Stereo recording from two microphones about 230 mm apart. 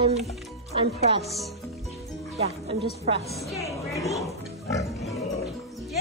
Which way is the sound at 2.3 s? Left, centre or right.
Right.